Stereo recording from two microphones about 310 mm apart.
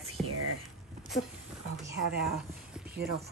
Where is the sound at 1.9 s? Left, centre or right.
Right.